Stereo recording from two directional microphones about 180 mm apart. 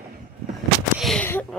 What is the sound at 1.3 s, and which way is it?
Speech, 10° left (ahead or behind).